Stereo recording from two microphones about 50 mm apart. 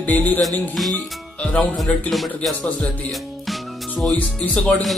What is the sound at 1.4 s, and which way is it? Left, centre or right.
Speech, left.